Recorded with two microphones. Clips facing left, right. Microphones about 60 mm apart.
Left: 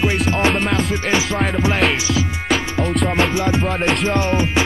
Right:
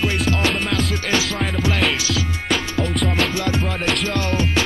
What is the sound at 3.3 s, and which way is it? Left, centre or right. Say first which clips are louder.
Music: left 4 dB; centre.